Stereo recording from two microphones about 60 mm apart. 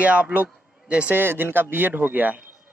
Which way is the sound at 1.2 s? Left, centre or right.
Right.